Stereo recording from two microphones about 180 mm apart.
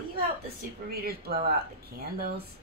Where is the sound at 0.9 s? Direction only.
60° right (ahead or behind).